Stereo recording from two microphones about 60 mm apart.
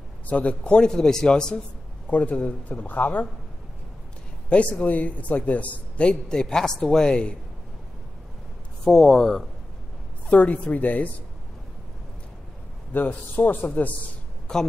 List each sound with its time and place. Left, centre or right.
0.3 s a man's voice: left
2.0 s a man's voice: left
4.5 s a man's voice: left
8.8 s a man's voice: centre
10.3 s a man's voice: left
12.9 s a man's voice: left
14.5 s a man's voice: centre